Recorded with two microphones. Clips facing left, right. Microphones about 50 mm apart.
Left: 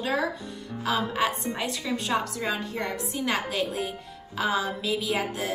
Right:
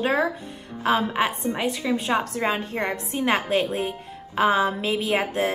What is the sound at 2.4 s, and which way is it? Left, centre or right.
Speech, right.